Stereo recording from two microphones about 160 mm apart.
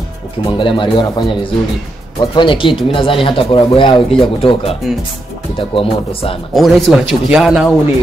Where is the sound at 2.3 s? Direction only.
30° left (ahead or behind).